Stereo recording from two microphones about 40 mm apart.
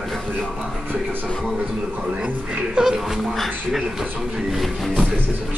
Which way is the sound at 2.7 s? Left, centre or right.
Centre.